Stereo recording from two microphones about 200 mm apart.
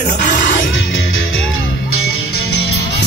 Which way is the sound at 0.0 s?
40° left (ahead or behind).